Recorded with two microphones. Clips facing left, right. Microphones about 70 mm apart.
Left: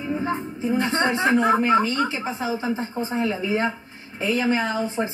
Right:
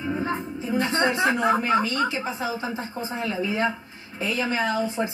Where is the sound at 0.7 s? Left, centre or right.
Left.